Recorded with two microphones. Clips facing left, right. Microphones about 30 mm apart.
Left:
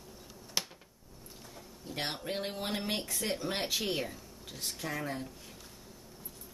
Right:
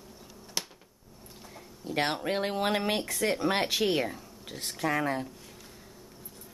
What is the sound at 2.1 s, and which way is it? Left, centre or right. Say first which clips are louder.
Speech: right 7 dB; right.